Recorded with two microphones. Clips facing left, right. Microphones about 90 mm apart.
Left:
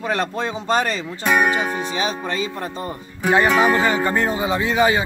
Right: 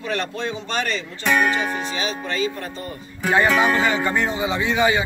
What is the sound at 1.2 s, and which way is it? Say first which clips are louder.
Speech: left 2 dB; 10° left (ahead or behind).